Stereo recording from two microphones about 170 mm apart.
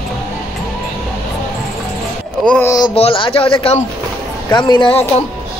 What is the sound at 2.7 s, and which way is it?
Speech, 25° left (ahead or behind).